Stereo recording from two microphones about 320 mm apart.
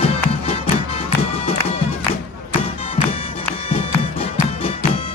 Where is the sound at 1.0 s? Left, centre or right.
Centre.